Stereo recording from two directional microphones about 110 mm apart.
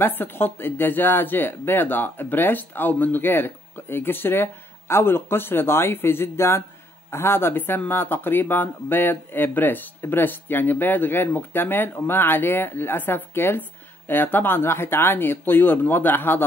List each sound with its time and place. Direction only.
0.0 s speech: 20° left (ahead or behind)